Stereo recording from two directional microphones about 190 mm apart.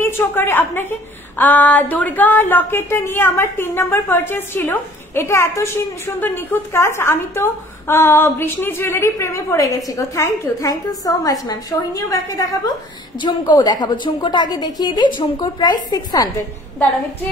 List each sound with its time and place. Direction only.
0.0 s a woman's voice: 10° left (ahead or behind)